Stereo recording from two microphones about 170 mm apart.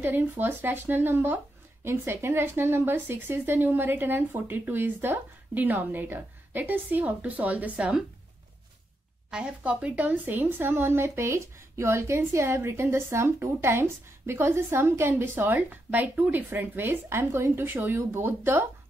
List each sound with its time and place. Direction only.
0.0 s speech: 10° right (ahead or behind)
9.3 s speech: 5° right (ahead or behind)